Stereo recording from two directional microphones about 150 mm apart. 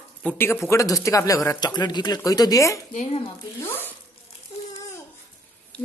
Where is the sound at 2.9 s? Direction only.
45° left (ahead or behind).